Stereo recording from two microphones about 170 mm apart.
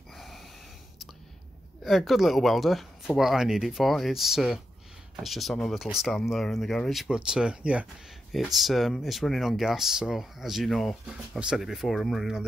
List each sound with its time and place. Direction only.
0.1 s snort: centre (ahead or behind)
1.8 s speech: centre (ahead or behind)